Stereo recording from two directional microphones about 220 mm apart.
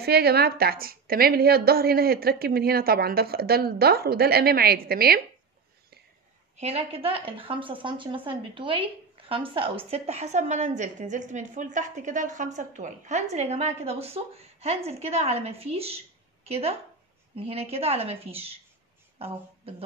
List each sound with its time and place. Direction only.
0.0 s a woman's voice: 45° right (ahead or behind)
6.6 s a woman's voice: 25° right (ahead or behind)